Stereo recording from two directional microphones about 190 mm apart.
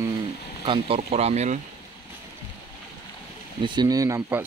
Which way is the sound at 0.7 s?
30° right (ahead or behind).